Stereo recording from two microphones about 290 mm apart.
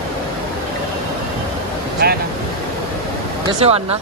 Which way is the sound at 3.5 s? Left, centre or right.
Right.